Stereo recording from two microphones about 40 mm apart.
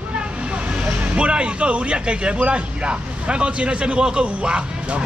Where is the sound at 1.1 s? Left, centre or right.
Right.